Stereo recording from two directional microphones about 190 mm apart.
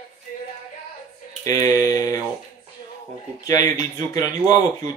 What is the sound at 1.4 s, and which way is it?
Mantra, 20° left (ahead or behind).